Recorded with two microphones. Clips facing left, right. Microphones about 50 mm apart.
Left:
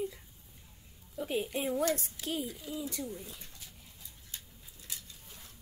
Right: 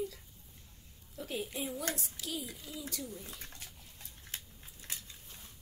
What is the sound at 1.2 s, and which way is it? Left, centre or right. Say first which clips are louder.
Speech: left 5 dB; left.